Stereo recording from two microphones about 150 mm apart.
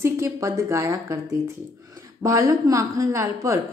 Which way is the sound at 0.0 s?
20° right (ahead or behind).